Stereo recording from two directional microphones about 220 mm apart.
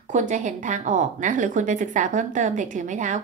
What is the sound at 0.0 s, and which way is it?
A woman's voice, 35° right (ahead or behind).